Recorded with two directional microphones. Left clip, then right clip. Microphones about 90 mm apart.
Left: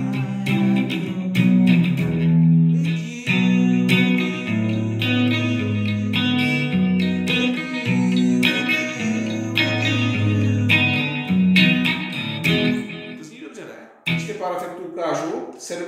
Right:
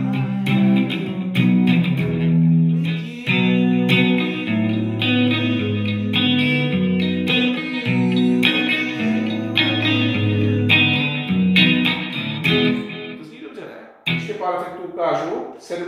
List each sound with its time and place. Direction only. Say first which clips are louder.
0.1 s music: right 2 dB; 30° right (ahead or behind)